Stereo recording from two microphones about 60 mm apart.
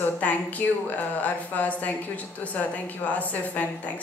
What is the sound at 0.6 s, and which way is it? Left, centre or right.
Speech, left.